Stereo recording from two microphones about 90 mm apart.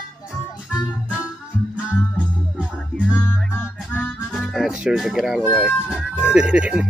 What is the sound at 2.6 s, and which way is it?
Music, 10° right (ahead or behind).